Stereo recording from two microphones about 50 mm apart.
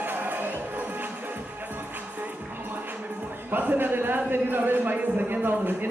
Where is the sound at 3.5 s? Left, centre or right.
Right.